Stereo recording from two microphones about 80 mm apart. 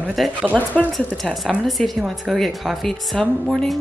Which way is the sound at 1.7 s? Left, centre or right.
Centre.